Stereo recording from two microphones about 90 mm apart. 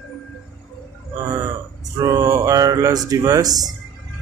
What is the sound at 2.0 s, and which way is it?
Speech, 40° right (ahead or behind).